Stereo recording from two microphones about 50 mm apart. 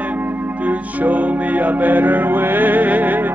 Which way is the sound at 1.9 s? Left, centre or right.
Right.